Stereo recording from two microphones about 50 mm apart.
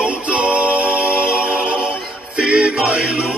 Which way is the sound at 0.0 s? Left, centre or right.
Right.